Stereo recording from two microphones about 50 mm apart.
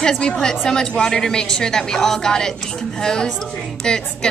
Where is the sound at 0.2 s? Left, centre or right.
Centre.